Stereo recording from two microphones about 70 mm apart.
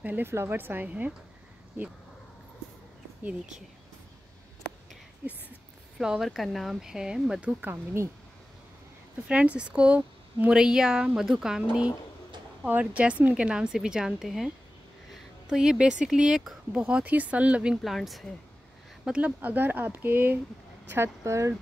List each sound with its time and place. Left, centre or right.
0.0 s speech: right
5.9 s speech: centre
7.6 s speech: right
9.3 s speech: centre
12.6 s speech: right; by 16.8 s centre
16.8 s speech: centre
17.8 s speech: centre
19.0 s speech: centre
20.9 s speech: right